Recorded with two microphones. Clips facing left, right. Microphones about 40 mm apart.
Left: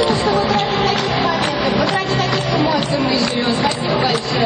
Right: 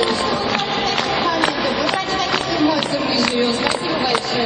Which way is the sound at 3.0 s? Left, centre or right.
Left.